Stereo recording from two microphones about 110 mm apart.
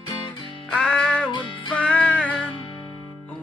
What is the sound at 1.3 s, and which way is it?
Music, 50° left (ahead or behind).